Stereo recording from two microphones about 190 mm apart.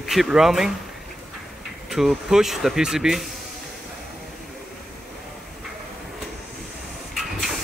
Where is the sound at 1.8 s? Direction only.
Centre (ahead or behind).